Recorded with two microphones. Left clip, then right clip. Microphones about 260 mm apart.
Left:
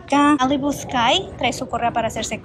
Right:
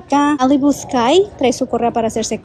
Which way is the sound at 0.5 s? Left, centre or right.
Right.